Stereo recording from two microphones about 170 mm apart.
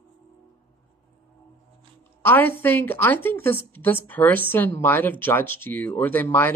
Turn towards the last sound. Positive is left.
turn(degrees=10)  # may be behind; listen again after turning